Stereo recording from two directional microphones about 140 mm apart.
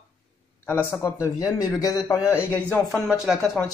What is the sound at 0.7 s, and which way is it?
A man's voice, 15° left (ahead or behind).